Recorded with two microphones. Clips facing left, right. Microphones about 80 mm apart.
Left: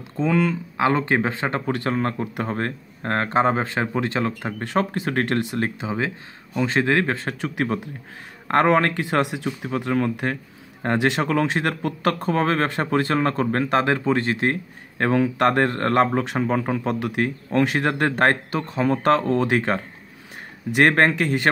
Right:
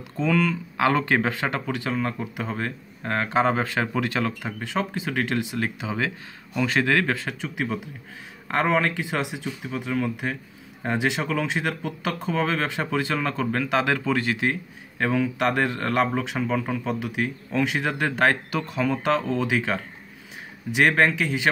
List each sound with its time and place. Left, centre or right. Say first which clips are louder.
0.2 s speech: left 2 dB; left
1.7 s speech: left 3 dB; left
3.3 s speech: left 1 dB; left
4.6 s speech: left 7 dB; left
5.8 s speech: left 2 dB; left
7.2 s speech: left 4 dB; left
18.9 s speech: left 6 dB; left